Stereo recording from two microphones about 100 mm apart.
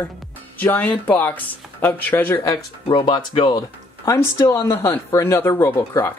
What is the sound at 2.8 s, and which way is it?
Speech, 55° left (ahead or behind).